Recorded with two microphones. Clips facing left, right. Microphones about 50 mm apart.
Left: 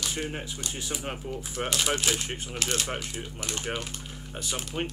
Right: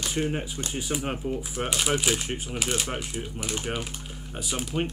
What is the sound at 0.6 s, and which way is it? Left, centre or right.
Speech, centre.